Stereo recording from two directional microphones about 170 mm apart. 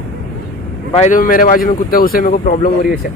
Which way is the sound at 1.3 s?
55° left (ahead or behind).